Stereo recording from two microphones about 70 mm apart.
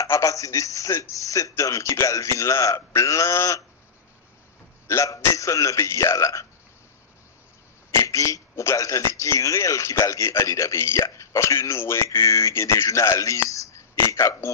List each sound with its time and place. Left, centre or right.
0.0 s a man's voice: left
4.8 s a man's voice: left
8.0 s a man's voice: left
12.2 s a man's voice: left